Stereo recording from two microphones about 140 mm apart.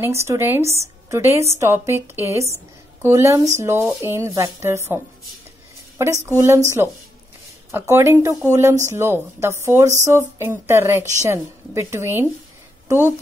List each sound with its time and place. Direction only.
0.0 s speech: 20° right (ahead or behind)